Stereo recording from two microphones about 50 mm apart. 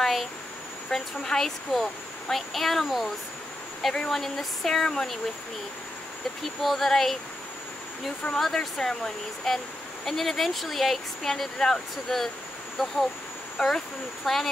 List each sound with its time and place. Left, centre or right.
0.0 s a sound: centre
0.8 s speech: centre
3.8 s speech: centre
4.1 s speech: centre
6.4 s speech: centre
8.4 s speech: centre
13.6 s speech: centre